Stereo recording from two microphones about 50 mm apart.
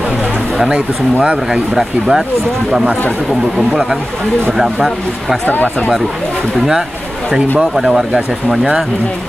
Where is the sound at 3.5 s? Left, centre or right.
Centre.